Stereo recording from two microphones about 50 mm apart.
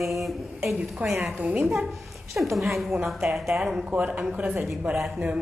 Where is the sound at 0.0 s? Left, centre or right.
Centre.